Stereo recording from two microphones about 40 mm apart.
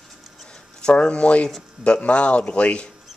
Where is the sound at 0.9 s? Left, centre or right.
Left.